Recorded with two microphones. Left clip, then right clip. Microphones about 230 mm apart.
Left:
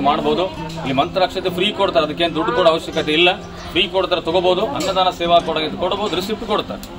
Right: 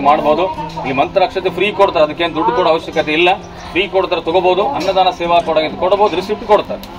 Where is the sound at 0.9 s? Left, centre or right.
Left.